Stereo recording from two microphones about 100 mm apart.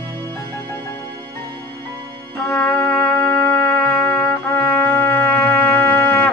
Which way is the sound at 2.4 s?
30° left (ahead or behind).